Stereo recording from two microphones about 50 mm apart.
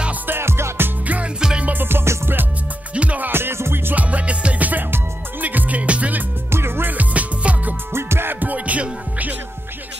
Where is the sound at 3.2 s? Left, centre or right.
Right.